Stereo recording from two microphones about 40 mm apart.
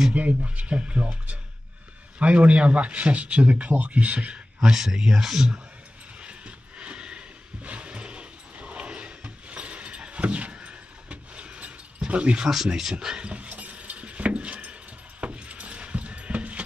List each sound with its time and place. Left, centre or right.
0.1 s speech: right
4.6 s speech: centre
6.2 s a sound: right
12.1 s speech: right
12.6 s speech: centre
13.3 s keys jangling: right